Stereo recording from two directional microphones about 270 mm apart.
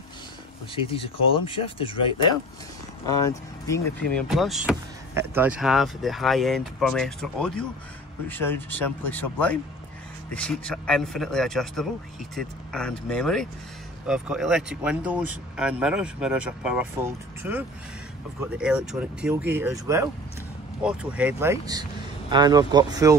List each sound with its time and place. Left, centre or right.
0.8 s speech: centre